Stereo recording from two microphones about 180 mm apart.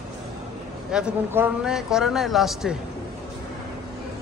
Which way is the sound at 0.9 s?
5° right (ahead or behind).